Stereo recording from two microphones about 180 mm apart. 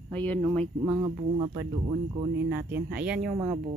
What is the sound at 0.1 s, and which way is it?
Speech, 10° left (ahead or behind).